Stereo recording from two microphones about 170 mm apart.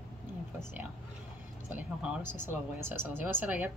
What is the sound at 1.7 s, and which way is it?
Speech, 10° right (ahead or behind).